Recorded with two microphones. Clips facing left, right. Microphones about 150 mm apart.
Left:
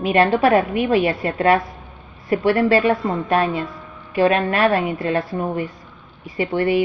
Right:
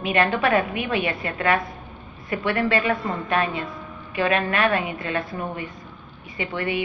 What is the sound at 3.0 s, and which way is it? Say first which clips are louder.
Speech: left 5 dB; centre (ahead or behind).